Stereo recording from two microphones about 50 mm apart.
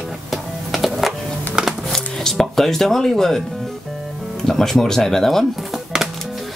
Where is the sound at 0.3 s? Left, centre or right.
Centre.